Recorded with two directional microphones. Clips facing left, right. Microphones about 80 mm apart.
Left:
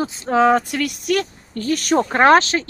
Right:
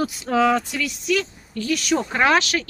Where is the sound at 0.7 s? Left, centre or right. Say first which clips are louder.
Left 3 dB; left.